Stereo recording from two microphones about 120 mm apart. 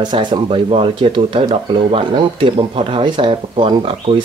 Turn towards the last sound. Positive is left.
turn(degrees=-45)  # may be behind; listen again after turning